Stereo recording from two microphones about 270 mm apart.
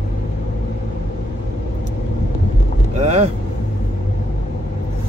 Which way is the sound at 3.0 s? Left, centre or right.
Right.